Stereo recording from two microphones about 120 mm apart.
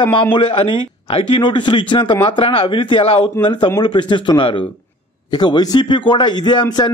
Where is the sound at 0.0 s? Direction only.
45° left (ahead or behind).